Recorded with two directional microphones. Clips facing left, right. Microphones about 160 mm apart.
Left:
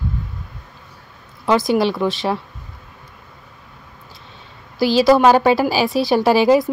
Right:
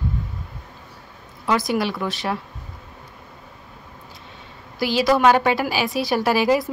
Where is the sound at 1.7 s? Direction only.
25° left (ahead or behind).